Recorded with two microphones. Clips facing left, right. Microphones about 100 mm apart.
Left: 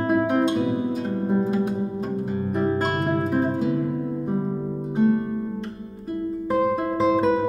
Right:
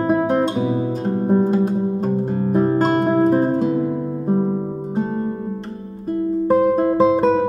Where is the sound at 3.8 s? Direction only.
25° right (ahead or behind).